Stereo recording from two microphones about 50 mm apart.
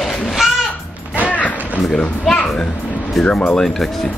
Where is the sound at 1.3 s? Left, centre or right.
Left.